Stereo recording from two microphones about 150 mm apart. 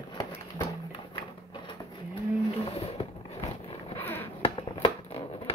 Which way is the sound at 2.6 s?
40° left (ahead or behind).